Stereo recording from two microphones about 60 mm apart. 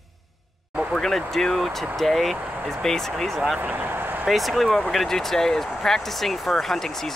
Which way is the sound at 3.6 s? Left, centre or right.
Right.